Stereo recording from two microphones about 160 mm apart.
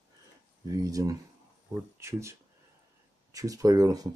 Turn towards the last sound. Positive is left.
turn(degrees=-20)  # may be behind; listen again after turning